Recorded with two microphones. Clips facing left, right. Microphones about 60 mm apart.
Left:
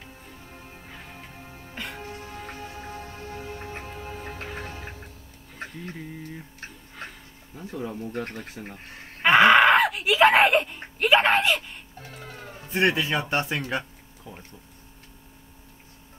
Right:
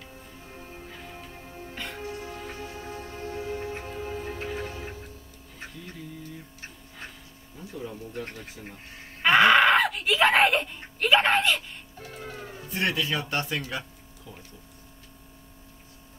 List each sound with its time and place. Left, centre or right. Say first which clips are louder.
0.0 s music: even; left
1.8 s music: left 2 dB; centre
2.0 s music: right 2 dB; left
4.4 s music: right 3 dB; left
5.9 s a sound: left 3 dB; left
7.5 s speech: left 4 dB; left
9.2 s a sound: left 2 dB; centre
12.4 s speech: left 6 dB; left
13.6 s a sound: left 4 dB; left